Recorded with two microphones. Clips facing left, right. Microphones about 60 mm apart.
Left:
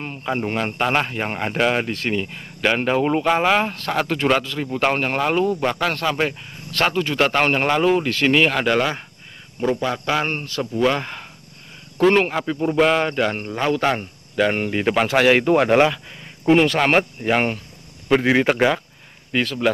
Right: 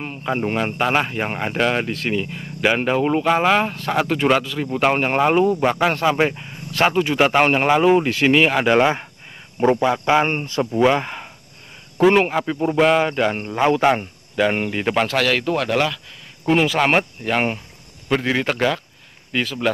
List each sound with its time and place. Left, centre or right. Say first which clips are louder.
0.0 s speech: right 1 dB; centre
8.7 s a man's voice: right 4 dB; right
9.8 s speech: right 5 dB; centre
15.1 s speech: left 4 dB; left
16.4 s speech: left 1 dB; centre
18.0 s a man's voice: left 4 dB; centre
19.3 s speech: left 1 dB; centre